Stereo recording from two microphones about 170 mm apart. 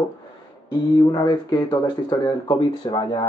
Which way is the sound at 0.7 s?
25° left (ahead or behind).